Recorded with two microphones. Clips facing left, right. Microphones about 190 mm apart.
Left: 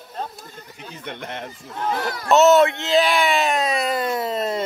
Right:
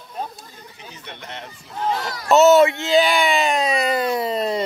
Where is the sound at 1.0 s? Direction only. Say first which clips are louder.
Left 5 dB; 55° left (ahead or behind).